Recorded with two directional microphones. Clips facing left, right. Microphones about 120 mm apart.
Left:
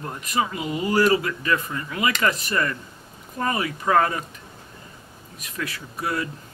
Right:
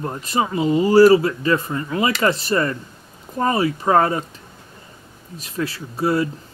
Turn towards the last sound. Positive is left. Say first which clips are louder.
# right 8 dB
turn(degrees=-30)  # may be behind; listen again after turning